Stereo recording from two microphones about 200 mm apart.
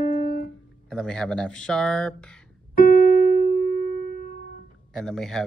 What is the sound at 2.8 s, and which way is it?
Keyboard, 45° left (ahead or behind).